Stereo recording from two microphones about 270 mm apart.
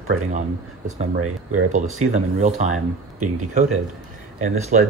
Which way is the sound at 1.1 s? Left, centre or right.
Right.